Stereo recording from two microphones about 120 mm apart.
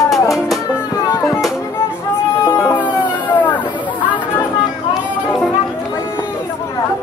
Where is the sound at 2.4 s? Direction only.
20° left (ahead or behind).